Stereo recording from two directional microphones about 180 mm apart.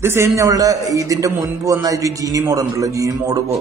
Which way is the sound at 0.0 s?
15° right (ahead or behind).